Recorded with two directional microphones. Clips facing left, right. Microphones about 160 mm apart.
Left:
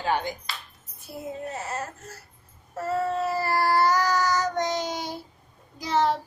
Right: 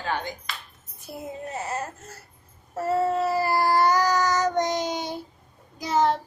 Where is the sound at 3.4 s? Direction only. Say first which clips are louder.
Even; 15° right (ahead or behind).